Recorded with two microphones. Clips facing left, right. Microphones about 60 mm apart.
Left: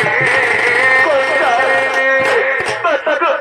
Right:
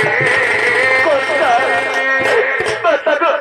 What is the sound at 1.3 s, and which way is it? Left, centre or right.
Music, centre.